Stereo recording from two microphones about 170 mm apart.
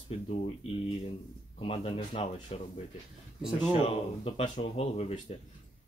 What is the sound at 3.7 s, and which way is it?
Speech, 35° left (ahead or behind).